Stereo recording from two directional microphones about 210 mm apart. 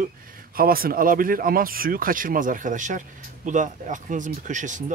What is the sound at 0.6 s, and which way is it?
Speech, 45° right (ahead or behind).